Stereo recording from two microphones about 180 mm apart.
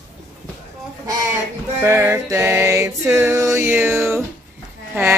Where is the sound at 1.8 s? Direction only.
15° right (ahead or behind).